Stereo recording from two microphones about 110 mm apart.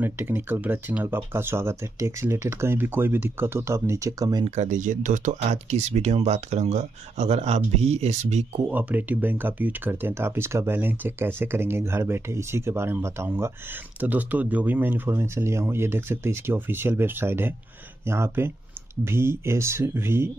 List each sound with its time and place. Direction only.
0.0 s speech: 20° right (ahead or behind); by 4.5 s 35° right (ahead or behind)
5.3 s speech: 90° right
8.6 s speech: 15° right (ahead or behind)